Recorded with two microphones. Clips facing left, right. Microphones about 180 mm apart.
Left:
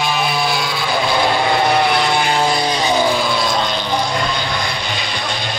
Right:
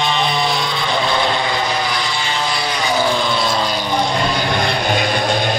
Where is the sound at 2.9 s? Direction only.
10° left (ahead or behind); by 3.8 s 5° right (ahead or behind).